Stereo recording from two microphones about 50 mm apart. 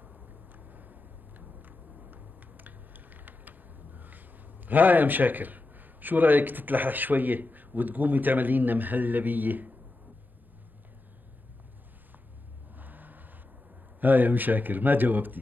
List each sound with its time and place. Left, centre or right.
0.7 s vehicle: right
1.4 s a sound: right
4.6 s speech: right
12.7 s vehicle: right
14.0 s speech: right